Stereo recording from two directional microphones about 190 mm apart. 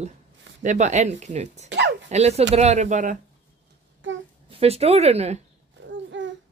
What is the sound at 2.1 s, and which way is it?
Speech, 35° right (ahead or behind).